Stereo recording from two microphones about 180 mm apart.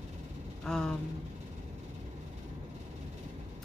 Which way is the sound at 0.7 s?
5° left (ahead or behind).